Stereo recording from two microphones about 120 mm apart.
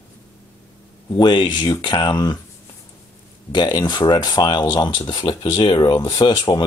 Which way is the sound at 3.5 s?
35° left (ahead or behind).